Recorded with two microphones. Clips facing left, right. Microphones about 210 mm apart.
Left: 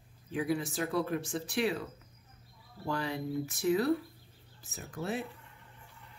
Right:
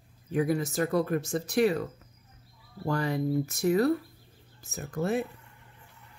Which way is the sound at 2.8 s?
45° right (ahead or behind).